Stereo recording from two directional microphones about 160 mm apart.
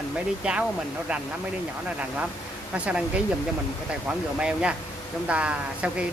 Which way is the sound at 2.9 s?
5° right (ahead or behind).